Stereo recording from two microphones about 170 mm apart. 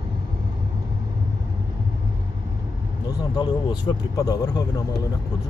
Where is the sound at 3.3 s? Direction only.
25° left (ahead or behind).